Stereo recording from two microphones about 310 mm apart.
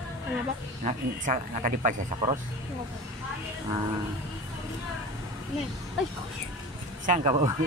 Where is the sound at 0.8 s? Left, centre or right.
Right.